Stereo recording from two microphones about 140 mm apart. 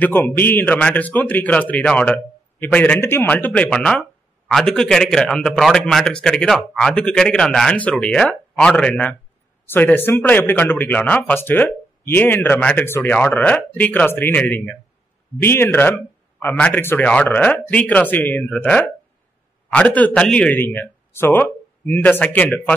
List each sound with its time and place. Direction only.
0.0 s a man's voice: 15° left (ahead or behind)